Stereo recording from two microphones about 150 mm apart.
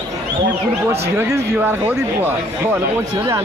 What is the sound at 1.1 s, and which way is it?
Speech, 15° right (ahead or behind).